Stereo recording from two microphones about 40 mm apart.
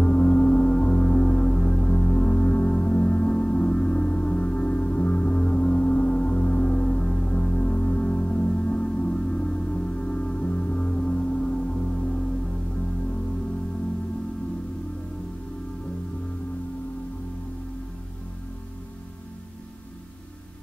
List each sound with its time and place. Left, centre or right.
0.0 s music: left